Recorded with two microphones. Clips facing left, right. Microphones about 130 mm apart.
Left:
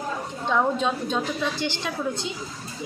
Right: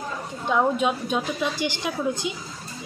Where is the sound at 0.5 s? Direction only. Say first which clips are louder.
Right 1 dB; 10° right (ahead or behind).